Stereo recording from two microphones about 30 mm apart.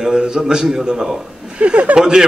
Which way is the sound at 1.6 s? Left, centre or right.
Right.